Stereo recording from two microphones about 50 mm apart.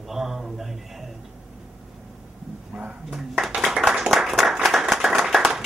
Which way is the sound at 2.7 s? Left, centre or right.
Right.